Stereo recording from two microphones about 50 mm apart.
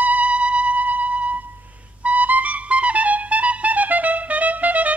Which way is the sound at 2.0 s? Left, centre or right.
Right.